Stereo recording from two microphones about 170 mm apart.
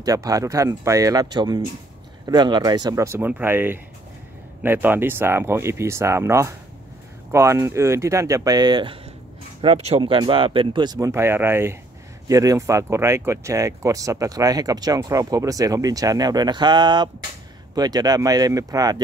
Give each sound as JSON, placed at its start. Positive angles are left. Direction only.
{"t": 0.0, "sound": "speech", "side_deg": -20}
{"t": 9.6, "sound": "speech", "side_deg": -35}